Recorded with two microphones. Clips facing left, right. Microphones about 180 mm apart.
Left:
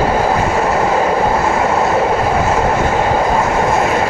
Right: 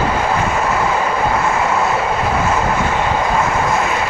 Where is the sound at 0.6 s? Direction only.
35° left (ahead or behind).